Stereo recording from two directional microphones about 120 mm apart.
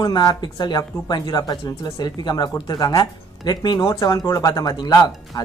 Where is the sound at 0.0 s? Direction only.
35° left (ahead or behind).